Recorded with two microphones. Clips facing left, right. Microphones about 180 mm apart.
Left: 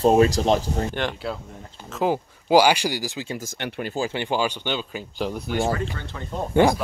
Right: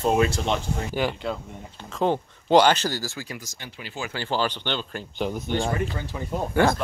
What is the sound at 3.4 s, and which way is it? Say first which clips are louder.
Speech: left 10 dB; 55° left (ahead or behind).